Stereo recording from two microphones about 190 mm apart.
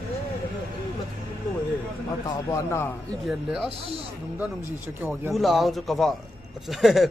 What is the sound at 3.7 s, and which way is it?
Speech, 30° right (ahead or behind).